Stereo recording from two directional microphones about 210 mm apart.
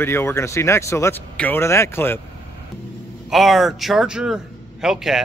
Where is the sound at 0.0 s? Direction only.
10° left (ahead or behind).